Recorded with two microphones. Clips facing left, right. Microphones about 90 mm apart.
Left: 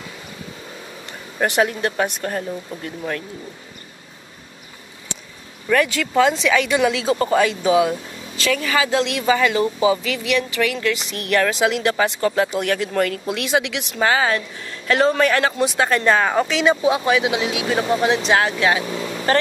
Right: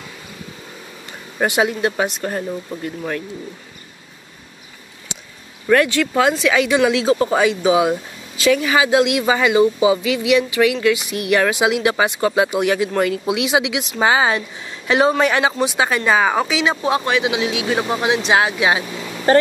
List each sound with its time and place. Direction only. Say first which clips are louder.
1.4 s speech: right 1 dB; 10° right (ahead or behind)
5.7 s speech: right 4 dB; 5° right (ahead or behind)
15.5 s speech: even; centre (ahead or behind)
19.3 s speech: right 5 dB; 30° right (ahead or behind)